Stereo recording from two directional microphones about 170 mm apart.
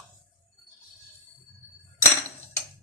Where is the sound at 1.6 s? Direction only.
10° right (ahead or behind).